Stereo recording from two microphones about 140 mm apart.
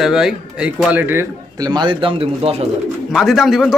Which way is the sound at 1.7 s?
35° right (ahead or behind).